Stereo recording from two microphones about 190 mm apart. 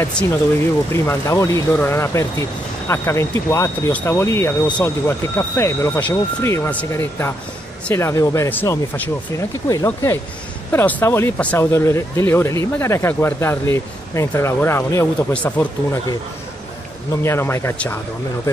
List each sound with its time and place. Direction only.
0.0 s speech: 5° left (ahead or behind)
17.2 s speech: 15° left (ahead or behind)